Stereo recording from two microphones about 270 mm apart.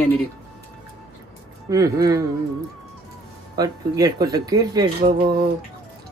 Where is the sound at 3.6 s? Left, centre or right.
Centre.